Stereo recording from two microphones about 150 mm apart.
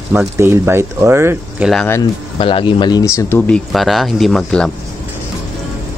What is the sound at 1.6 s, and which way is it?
Speech, centre (ahead or behind).